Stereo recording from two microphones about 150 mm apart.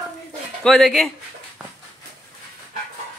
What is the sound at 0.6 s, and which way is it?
Speech, centre (ahead or behind).